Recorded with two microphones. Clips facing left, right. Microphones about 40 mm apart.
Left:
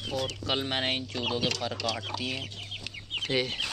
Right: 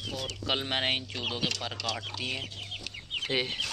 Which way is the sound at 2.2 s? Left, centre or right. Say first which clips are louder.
Even; right.